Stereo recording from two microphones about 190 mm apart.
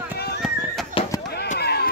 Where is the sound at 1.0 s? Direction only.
30° left (ahead or behind).